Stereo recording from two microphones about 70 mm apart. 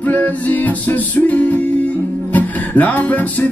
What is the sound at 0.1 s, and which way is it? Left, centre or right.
Music, left.